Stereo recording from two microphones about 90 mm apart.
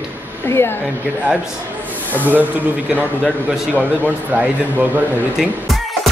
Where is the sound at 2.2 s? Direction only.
20° right (ahead or behind).